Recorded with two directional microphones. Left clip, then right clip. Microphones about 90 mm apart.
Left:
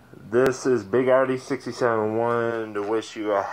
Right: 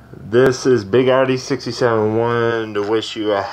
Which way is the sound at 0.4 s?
5° left (ahead or behind).